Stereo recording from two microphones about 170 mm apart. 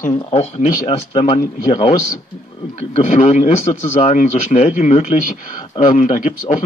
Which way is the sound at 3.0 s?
45° left (ahead or behind).